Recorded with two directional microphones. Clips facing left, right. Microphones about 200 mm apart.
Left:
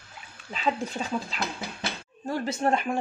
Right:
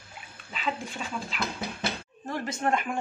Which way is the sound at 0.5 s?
40° left (ahead or behind).